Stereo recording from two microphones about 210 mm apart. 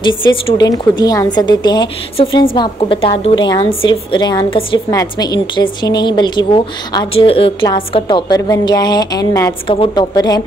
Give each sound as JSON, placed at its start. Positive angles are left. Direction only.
{"t": 0.0, "sound": "a woman's voice", "side_deg": 20}